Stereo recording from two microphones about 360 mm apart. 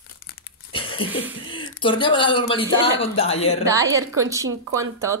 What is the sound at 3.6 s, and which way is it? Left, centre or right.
Speech, centre.